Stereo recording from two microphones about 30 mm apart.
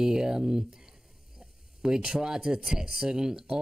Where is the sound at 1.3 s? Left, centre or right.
Right.